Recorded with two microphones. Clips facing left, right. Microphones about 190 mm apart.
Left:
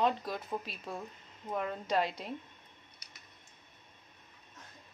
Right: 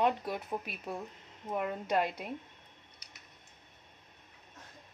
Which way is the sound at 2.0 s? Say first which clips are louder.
Even; 55° right (ahead or behind).